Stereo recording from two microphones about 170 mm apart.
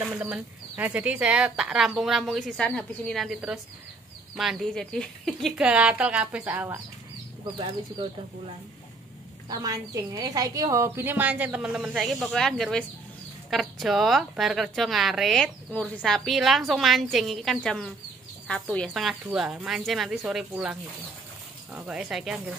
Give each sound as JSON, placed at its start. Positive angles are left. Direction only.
{"t": 0.0, "sound": "a woman's voice", "side_deg": -10}
{"t": 7.5, "sound": "speech", "side_deg": -30}
{"t": 9.5, "sound": "a woman's voice", "side_deg": -20}
{"t": 21.7, "sound": "speech", "side_deg": -5}